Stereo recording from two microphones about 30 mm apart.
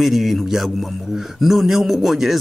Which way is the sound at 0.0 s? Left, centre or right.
Centre.